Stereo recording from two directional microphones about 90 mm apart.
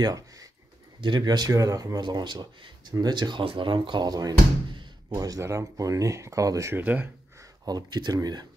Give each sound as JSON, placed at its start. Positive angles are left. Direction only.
{"t": 0.0, "sound": "a sound", "side_deg": -40}
{"t": 1.0, "sound": "speech", "side_deg": -55}
{"t": 2.0, "sound": "speech", "side_deg": -55}
{"t": 6.7, "sound": "speech", "side_deg": -20}
{"t": 7.6, "sound": "speech", "side_deg": -50}